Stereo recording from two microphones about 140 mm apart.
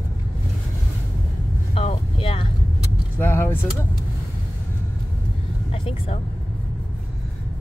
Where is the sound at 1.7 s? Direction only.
45° left (ahead or behind).